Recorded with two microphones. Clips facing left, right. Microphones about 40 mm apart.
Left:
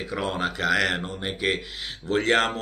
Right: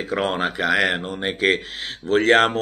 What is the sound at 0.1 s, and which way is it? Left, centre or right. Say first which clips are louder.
Speech: right 6 dB; right.